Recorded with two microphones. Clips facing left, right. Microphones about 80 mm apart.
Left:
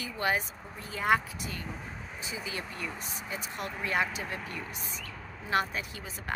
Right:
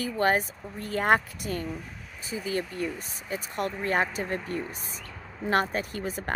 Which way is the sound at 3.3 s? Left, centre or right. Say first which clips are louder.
Right 8 dB; right.